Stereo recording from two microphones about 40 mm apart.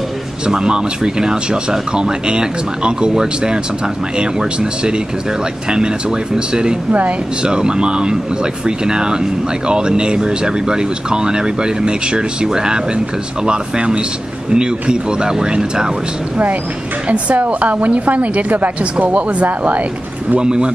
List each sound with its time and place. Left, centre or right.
0.5 s speech: centre
6.9 s a woman's voice: right
7.4 s speech: right
17.1 s a woman's voice: right
20.3 s speech: right